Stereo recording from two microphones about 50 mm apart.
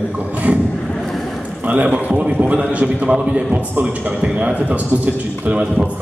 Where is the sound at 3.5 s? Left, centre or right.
Right.